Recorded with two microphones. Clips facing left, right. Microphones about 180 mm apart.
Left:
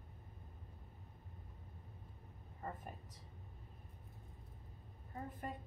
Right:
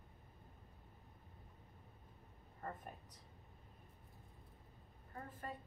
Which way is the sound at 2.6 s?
10° left (ahead or behind).